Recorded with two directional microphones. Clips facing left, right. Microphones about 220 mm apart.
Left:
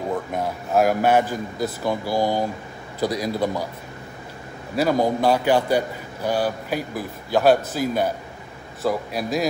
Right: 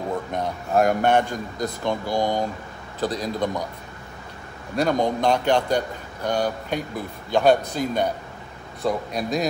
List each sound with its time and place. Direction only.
0.3 s a man's voice: 5° left (ahead or behind)
4.7 s a man's voice: 5° left (ahead or behind)